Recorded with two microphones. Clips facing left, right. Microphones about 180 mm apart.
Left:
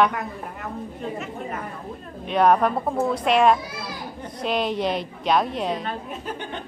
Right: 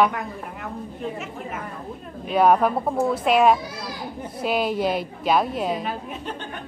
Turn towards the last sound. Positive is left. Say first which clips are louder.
# right 1 dB
turn(degrees=-5)  # may be behind; listen again after turning